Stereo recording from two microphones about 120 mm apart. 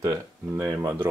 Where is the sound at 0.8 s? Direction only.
20° right (ahead or behind).